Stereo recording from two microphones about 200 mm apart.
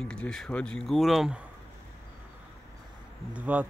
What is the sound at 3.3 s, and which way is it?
Speech, 5° right (ahead or behind).